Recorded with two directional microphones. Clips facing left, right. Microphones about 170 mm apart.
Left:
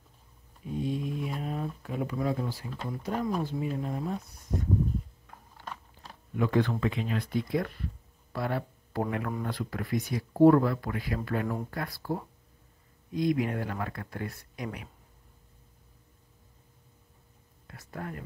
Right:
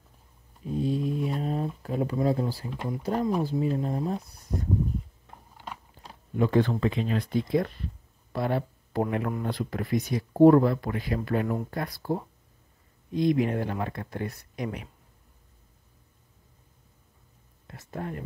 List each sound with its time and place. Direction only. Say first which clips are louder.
0.7 s mantra: right 4 dB; 35° right (ahead or behind)
2.7 s speech: right 4 dB; 15° right (ahead or behind)
3.0 s speech: right 4 dB; 35° right (ahead or behind)
5.2 s biting: right 2 dB; 20° right (ahead or behind)
6.3 s a man's voice: right 3 dB; 30° right (ahead or behind)
17.6 s speech: right 4 dB; 25° right (ahead or behind)